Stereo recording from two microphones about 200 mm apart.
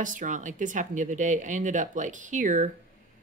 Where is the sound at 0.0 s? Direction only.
40° right (ahead or behind).